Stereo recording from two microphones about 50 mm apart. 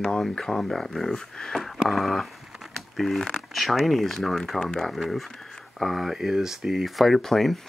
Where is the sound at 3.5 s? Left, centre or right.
Centre.